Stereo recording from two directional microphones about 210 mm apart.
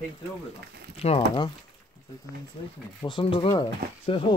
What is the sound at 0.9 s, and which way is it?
Speech, 30° left (ahead or behind).